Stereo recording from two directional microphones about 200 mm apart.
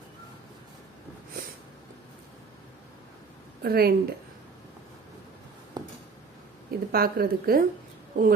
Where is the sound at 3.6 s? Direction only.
50° right (ahead or behind).